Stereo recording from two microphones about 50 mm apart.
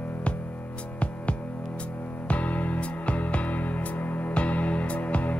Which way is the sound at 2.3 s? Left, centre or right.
Left.